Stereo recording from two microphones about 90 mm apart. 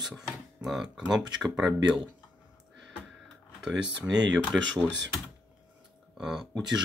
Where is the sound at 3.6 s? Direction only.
10° right (ahead or behind).